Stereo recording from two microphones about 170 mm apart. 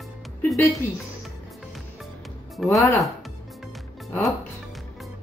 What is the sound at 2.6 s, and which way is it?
Speech, centre (ahead or behind).